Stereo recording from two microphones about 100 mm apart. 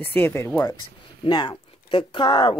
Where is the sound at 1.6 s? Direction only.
65° left (ahead or behind).